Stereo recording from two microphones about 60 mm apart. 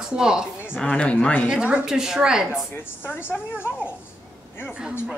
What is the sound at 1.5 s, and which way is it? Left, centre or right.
A woman's voice, centre.